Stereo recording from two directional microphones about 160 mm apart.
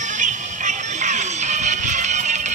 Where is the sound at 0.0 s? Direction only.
50° right (ahead or behind).